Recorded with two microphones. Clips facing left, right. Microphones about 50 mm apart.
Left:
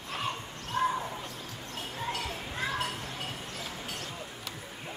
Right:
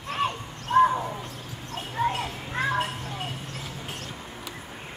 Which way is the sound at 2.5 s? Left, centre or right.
Right.